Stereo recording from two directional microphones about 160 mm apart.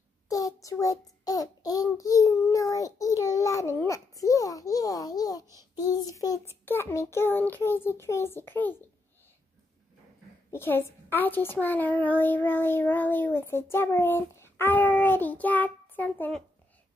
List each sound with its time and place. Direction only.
0.3 s child singing: 20° left (ahead or behind)
10.5 s a woman's voice: 15° left (ahead or behind)
11.6 s child singing: 10° left (ahead or behind)